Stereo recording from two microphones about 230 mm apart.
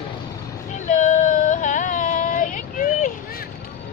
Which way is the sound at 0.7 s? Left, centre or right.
Left.